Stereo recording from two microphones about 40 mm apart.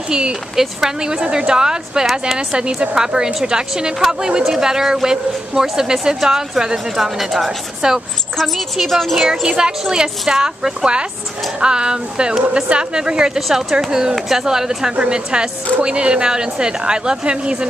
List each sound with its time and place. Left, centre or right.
0.1 s a woman's voice: right; by 7.5 s centre
7.8 s a woman's voice: centre
8.4 s a woman's voice: centre
9.3 s a woman's voice: centre
13.5 s a woman's voice: centre
15.0 s a woman's voice: right